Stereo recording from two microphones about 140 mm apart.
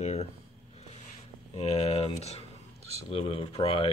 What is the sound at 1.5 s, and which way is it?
Speech, 50° left (ahead or behind).